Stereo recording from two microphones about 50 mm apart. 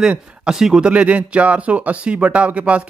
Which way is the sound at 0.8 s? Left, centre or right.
Right.